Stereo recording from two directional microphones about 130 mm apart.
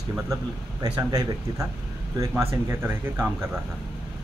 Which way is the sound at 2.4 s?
20° right (ahead or behind).